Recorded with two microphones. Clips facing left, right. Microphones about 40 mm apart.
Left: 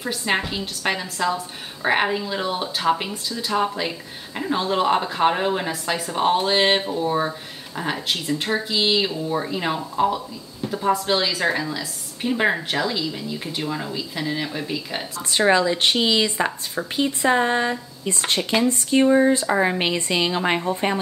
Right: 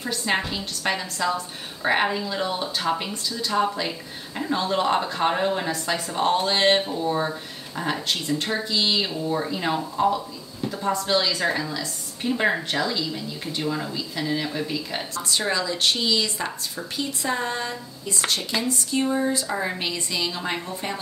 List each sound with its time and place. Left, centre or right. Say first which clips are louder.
0.0 s speech: left 2 dB; centre
15.2 s a woman's voice: left 8 dB; left